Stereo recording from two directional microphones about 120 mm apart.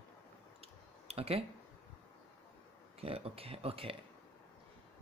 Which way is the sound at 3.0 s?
55° right (ahead or behind).